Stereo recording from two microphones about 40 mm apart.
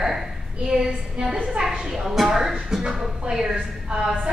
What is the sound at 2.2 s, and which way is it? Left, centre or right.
A woman's voice, centre.